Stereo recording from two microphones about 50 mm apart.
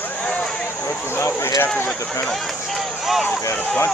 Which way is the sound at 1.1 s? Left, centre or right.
Left.